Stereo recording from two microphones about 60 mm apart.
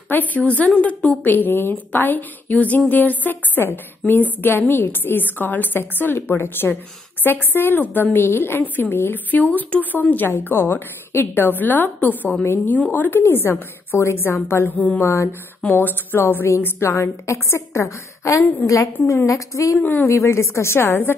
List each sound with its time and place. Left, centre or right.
0.1 s a woman's voice: left
13.2 s a woman's voice: left
14.7 s a woman's voice: left
15.0 s a woman's voice: left
16.4 s a woman's voice: left
19.8 s a woman's voice: left
20.1 s a woman's voice: left